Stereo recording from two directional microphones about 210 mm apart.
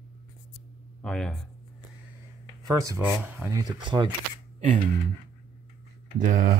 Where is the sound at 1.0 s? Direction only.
5° left (ahead or behind).